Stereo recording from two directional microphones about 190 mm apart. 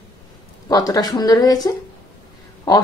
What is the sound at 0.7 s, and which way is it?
A woman's voice, 20° left (ahead or behind).